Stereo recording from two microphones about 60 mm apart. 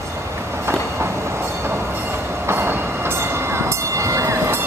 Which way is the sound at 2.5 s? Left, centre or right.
Right.